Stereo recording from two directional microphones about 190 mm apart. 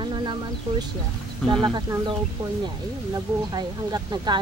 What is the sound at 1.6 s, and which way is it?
Speech, 20° right (ahead or behind).